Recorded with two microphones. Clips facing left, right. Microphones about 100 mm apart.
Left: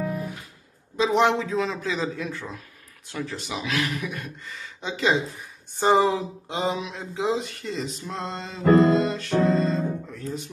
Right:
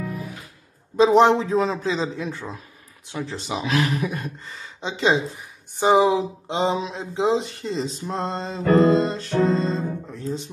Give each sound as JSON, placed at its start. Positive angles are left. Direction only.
{"t": 0.9, "sound": "a man's voice", "side_deg": -35}
{"t": 5.8, "sound": "speech", "side_deg": -15}